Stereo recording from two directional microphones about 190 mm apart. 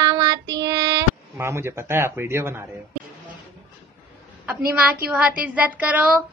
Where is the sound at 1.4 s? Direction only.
15° right (ahead or behind).